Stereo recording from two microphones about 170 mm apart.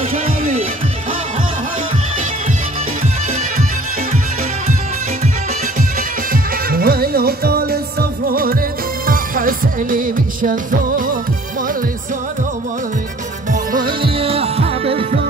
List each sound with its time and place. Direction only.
5.8 s music: 55° right (ahead or behind)
13.5 s music: 55° right (ahead or behind)
14.0 s music: 35° right (ahead or behind)